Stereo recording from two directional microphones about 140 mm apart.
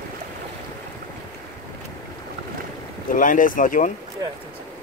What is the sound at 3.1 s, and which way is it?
Speech, 70° left (ahead or behind).